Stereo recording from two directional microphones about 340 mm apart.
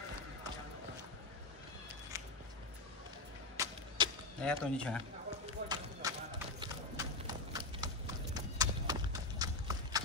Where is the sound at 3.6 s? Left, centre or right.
Centre.